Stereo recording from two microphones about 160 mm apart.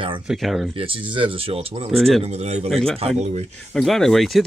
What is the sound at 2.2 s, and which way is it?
Speech, 45° right (ahead or behind).